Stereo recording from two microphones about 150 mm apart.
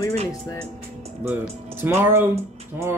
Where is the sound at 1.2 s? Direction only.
15° right (ahead or behind).